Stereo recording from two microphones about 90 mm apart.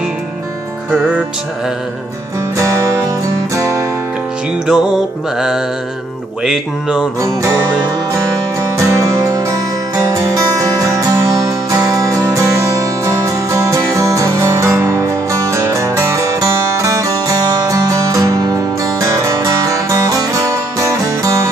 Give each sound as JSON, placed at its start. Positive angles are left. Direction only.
{"t": 2.5, "sound": "music", "side_deg": -35}
{"t": 4.6, "sound": "music", "side_deg": -5}
{"t": 6.4, "sound": "speech", "side_deg": -5}
{"t": 8.7, "sound": "music", "side_deg": -35}